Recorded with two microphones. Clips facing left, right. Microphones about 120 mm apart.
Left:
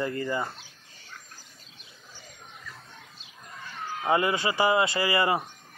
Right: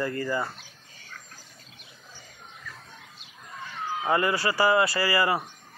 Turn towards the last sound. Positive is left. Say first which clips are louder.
# even
turn(degrees=25)  # may be behind; listen again after turning